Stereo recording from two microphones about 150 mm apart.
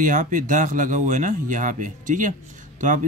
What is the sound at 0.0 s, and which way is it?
Speech, 60° right (ahead or behind).